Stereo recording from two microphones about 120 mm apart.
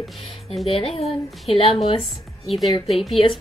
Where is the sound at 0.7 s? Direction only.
55° left (ahead or behind).